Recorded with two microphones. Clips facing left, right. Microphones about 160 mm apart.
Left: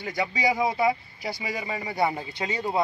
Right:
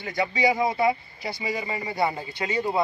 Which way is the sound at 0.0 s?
10° left (ahead or behind).